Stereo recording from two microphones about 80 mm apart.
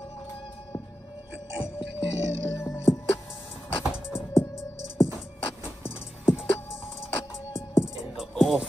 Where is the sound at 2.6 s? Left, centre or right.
Left.